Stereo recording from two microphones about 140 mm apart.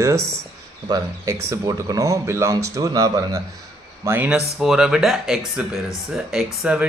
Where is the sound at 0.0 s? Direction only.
20° right (ahead or behind).